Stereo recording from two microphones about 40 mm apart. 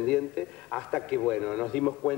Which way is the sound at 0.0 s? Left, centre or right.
Left.